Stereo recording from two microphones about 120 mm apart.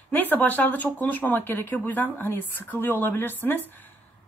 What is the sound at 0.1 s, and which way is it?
Speech, 15° left (ahead or behind).